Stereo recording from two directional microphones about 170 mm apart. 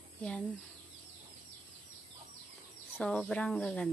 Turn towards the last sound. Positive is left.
turn(degrees=5)  # may be behind; listen again after turning